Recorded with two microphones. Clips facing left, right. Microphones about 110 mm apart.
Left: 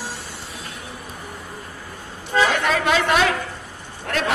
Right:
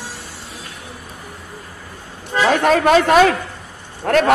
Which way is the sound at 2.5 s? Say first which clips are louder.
Right 7 dB; 45° right (ahead or behind).